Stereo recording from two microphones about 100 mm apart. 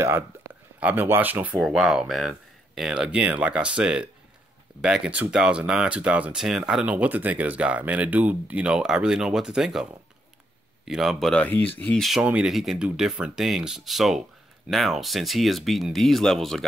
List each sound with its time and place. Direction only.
0.7 s speech: 20° right (ahead or behind)
1.5 s speech: centre (ahead or behind)
10.9 s speech: centre (ahead or behind)
11.4 s speech: 20° left (ahead or behind)
12.0 s speech: centre (ahead or behind)